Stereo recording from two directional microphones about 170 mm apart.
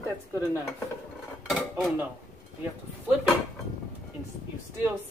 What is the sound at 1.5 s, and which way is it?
Dishes, centre (ahead or behind).